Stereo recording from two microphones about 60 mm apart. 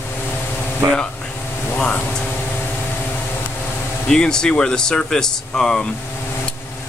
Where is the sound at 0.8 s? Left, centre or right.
Right.